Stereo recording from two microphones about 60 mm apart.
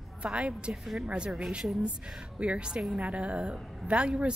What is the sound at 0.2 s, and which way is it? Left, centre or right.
A woman's voice, right.